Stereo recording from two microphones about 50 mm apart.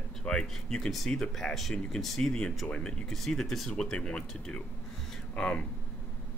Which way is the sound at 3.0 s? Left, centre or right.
Centre.